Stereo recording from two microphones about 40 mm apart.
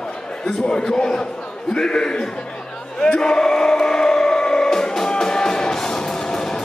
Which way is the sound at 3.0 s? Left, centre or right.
Centre.